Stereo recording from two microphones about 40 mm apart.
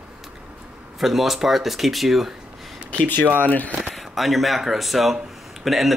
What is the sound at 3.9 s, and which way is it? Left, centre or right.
Speech, centre.